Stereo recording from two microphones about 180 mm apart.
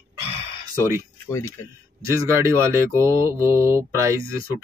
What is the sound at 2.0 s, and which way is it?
Speech, 15° right (ahead or behind).